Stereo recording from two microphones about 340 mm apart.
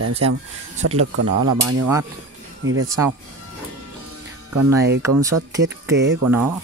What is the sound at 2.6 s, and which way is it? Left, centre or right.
Speech, right.